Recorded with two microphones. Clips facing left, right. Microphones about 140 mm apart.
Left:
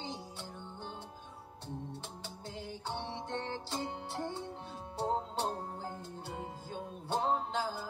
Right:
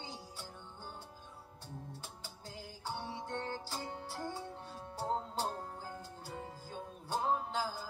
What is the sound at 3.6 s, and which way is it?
Music, 25° left (ahead or behind).